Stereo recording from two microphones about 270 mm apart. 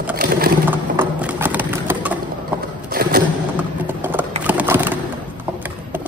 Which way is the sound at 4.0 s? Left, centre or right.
Centre.